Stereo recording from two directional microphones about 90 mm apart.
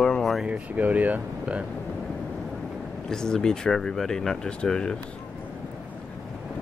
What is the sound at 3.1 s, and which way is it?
Speech, 5° left (ahead or behind).